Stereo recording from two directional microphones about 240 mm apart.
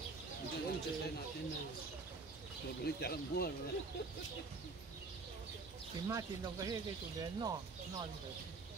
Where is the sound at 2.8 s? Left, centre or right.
Left.